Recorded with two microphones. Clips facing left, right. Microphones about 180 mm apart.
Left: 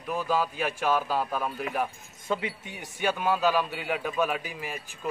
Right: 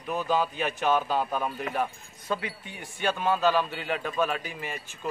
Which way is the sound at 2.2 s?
15° left (ahead or behind).